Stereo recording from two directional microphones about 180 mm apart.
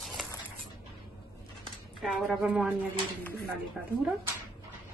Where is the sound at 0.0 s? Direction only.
Centre (ahead or behind).